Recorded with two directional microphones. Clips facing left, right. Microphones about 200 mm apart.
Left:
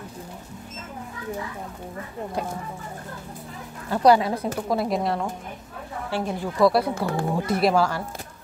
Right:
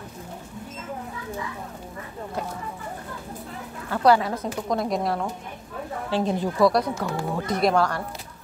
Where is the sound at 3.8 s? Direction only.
15° left (ahead or behind).